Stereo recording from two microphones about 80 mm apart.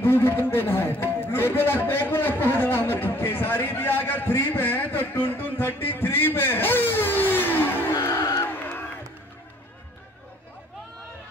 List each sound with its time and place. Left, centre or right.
0.0 s a sound: left
0.5 s a man's voice: left
8.1 s crowd: left
8.5 s crowd: left